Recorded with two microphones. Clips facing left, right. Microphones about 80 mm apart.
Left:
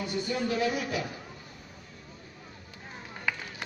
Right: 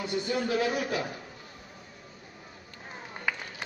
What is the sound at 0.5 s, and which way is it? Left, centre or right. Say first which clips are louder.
Speech: right 1 dB; right.